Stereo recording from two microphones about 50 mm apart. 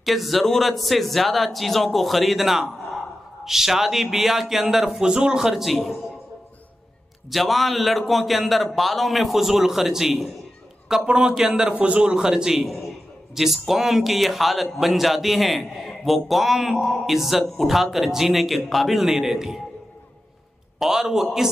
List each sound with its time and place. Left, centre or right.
0.0 s a man's voice: centre
7.2 s a man's voice: centre
12.6 s a man's voice: centre
20.8 s a man's voice: centre